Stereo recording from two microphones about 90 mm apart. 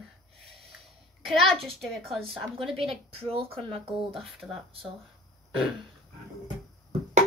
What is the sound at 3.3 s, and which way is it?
Speech, 90° right.